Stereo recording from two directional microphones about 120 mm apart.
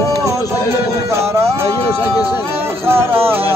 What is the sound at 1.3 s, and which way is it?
Music, 20° right (ahead or behind).